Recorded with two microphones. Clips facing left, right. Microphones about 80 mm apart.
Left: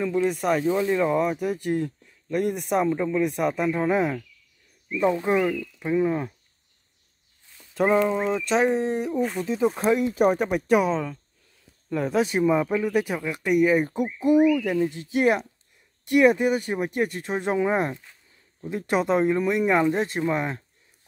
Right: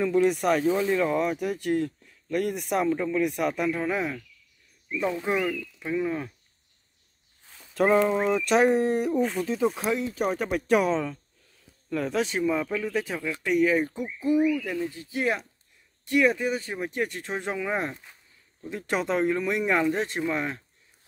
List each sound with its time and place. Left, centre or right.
0.0 s speech: centre
3.6 s speech: centre
7.7 s speech: centre
9.2 s speech: centre
14.4 s speech: left
15.1 s speech: left
17.5 s speech: left
18.6 s speech: centre
20.2 s speech: centre